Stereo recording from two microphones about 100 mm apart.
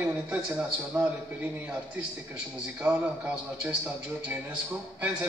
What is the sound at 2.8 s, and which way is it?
Speech, 10° right (ahead or behind).